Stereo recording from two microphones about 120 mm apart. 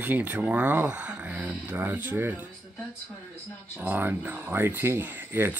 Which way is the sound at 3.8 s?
15° right (ahead or behind).